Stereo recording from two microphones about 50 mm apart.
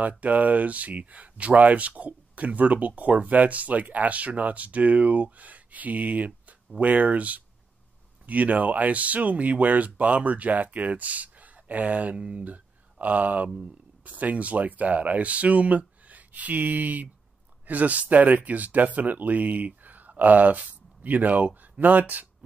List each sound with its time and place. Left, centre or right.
0.2 s speech: right
13.0 s speech: right